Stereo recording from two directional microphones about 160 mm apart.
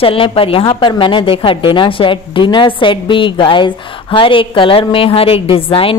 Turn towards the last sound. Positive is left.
turn(degrees=35)  # may be behind; listen again after turning